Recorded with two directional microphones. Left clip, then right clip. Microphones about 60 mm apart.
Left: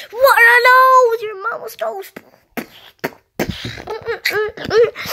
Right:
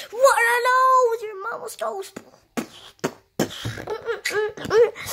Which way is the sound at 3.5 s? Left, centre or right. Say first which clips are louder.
Left 5 dB; left.